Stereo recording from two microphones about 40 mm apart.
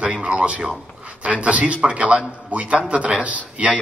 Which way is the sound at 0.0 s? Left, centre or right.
Right.